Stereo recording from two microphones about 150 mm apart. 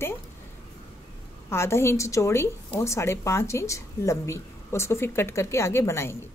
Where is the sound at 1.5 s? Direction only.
15° left (ahead or behind).